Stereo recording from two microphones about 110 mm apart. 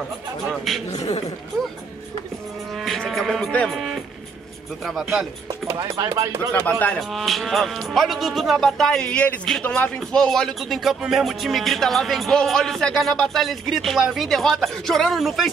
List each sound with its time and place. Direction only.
0.5 s speech: centre (ahead or behind)
2.7 s speech: centre (ahead or behind)
5.5 s speech: 35° right (ahead or behind)
7.0 s speech: centre (ahead or behind)